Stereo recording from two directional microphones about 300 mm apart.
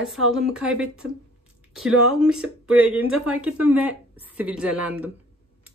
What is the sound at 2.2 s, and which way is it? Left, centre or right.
Speech, centre.